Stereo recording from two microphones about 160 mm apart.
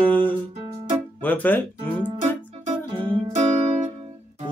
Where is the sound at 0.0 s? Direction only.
10° left (ahead or behind).